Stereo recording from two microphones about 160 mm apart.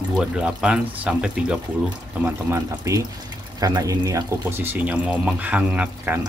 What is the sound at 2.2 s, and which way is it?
Speech, 20° right (ahead or behind).